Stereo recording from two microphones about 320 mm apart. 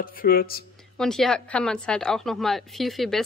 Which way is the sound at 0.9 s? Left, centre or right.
Centre.